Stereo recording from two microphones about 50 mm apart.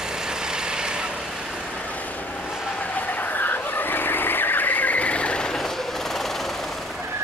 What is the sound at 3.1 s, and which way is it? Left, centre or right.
Vehicle, left.